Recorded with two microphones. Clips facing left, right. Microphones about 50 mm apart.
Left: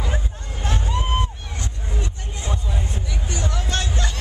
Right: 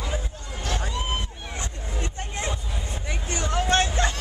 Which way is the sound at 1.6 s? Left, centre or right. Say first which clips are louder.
Left 2 dB; right.